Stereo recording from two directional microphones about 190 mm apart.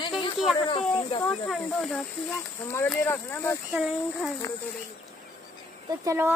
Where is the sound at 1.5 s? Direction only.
Centre (ahead or behind).